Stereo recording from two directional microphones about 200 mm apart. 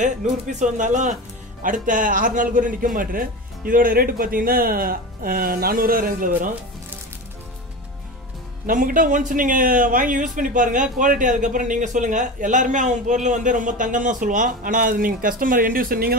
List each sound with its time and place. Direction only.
0.0 s a man's voice: 40° right (ahead or behind)
8.6 s speech: 40° right (ahead or behind)